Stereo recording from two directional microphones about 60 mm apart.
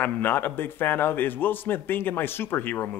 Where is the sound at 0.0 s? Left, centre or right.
Left.